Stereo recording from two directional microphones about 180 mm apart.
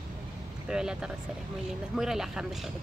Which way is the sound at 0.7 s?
5° right (ahead or behind).